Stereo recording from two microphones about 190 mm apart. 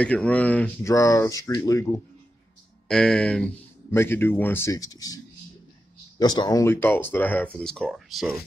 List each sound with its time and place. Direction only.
0.0 s speech: 5° left (ahead or behind)
2.9 s speech: 5° left (ahead or behind)